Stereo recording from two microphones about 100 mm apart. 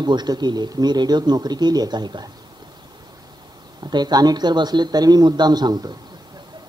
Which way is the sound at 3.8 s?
45° right (ahead or behind).